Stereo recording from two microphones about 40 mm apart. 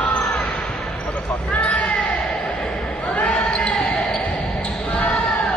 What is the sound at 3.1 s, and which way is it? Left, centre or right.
Basketball bounce, left.